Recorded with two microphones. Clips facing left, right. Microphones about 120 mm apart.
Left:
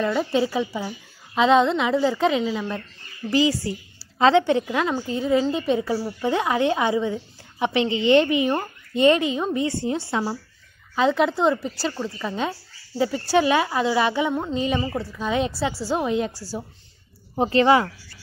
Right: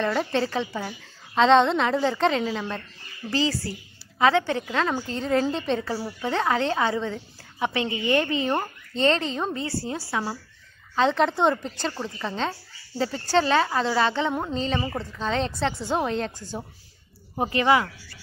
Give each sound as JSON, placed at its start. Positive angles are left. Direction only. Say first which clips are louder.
{"t": 0.0, "sound": "a woman's voice", "louder": "left 3 dB", "side_deg": 5}
{"t": 11.0, "sound": "a woman's voice", "louder": "left 1 dB", "side_deg": 5}
{"t": 17.4, "sound": "speech", "louder": "left 4 dB", "side_deg": 30}